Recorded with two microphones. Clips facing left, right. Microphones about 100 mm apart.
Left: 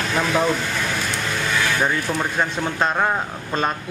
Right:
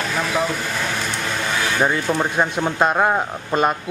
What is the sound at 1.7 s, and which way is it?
A man's voice, 20° right (ahead or behind).